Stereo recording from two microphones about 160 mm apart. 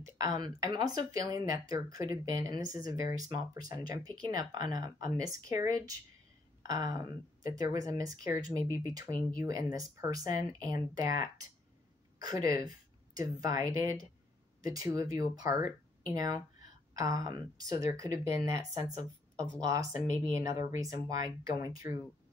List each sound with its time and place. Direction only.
0.0 s a woman's voice: 20° right (ahead or behind)